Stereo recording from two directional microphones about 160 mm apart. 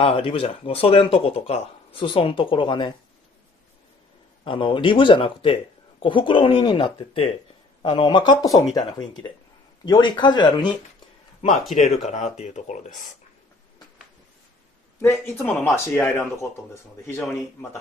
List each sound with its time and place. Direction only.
0.0 s speech: 35° left (ahead or behind)
4.5 s speech: 30° left (ahead or behind)
9.8 s speech: 30° left (ahead or behind)
11.9 s speech: 45° left (ahead or behind)
15.0 s speech: 15° left (ahead or behind)
15.3 s speech: centre (ahead or behind)
15.7 s speech: 10° left (ahead or behind)